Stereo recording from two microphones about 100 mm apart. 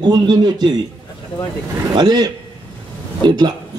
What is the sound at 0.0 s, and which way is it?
Speech, 45° right (ahead or behind).